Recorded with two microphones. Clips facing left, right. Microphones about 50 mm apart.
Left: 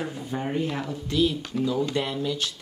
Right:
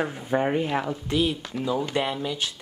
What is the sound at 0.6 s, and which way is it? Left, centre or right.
Speech, right.